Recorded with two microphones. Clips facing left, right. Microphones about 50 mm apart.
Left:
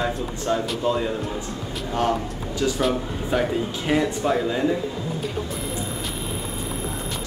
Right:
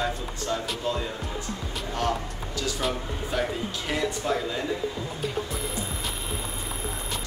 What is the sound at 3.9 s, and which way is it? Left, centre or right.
Speech, left.